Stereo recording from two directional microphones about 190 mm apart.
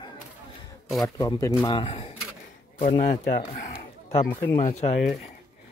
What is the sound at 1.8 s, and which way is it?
Speech, 35° left (ahead or behind).